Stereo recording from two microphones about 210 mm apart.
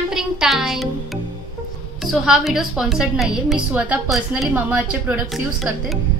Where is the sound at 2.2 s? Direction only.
Centre (ahead or behind).